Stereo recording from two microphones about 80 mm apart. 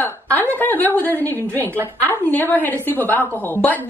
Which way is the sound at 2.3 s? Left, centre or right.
Left.